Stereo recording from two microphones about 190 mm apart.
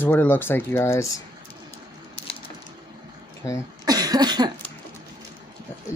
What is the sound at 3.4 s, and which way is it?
Speech, 15° left (ahead or behind).